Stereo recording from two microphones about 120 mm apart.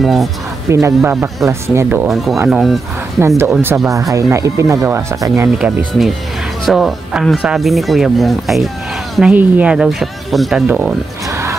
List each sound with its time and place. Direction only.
0.0 s speech: centre (ahead or behind)
0.7 s speech: 25° right (ahead or behind)
2.4 s speech: 5° right (ahead or behind)
3.2 s speech: 20° right (ahead or behind)
6.6 s speech: centre (ahead or behind)
10.7 s speech: 15° right (ahead or behind)